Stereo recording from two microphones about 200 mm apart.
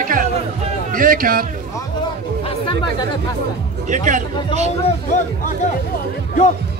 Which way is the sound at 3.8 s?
40° right (ahead or behind).